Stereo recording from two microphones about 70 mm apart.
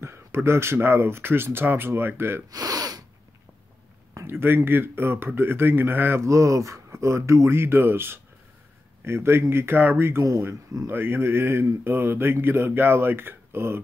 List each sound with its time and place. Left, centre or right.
0.0 s speech: right
2.5 s speech: right
4.3 s speech: right
6.2 s speech: right
10.2 s speech: right
10.9 s speech: right